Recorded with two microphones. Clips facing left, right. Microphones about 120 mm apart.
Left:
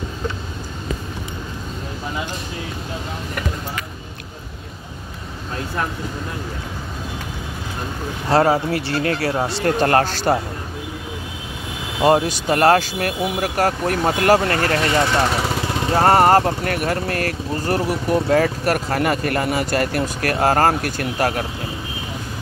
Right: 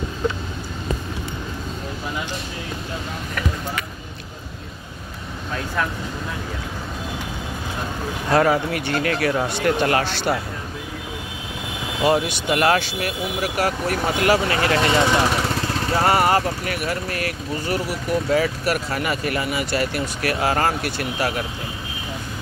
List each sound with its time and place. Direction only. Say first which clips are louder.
8.3 s speech: left 2 dB; 30° left (ahead or behind)
12.0 s speech: left 4 dB; 40° left (ahead or behind)
14.8 s speech: even; 25° right (ahead or behind)
15.9 s speech: left 5 dB; 40° left (ahead or behind)